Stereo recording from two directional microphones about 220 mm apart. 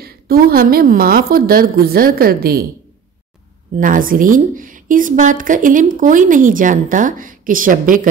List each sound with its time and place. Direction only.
0.0 s a woman's voice: 40° right (ahead or behind)
3.7 s a woman's voice: 35° right (ahead or behind)